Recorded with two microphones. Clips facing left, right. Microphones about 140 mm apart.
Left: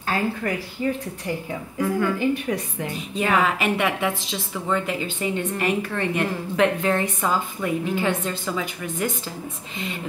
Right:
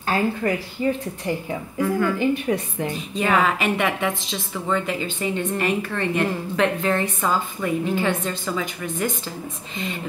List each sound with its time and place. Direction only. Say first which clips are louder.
0.0 s a woman's voice: right 3 dB; 30° right (ahead or behind)
2.1 s a woman's voice: right 2 dB; 25° right (ahead or behind)
3.2 s a woman's voice: right 1 dB; 10° left (ahead or behind)